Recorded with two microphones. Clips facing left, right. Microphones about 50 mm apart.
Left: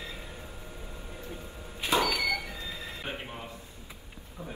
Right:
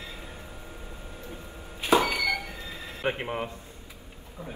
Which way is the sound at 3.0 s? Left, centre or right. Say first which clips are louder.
Right 13 dB; right.